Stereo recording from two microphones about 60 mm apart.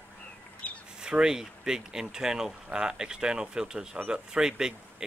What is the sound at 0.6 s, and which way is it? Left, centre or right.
Bird, left.